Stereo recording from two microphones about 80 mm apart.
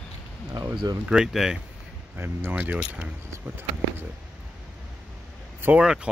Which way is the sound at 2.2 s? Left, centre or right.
Right.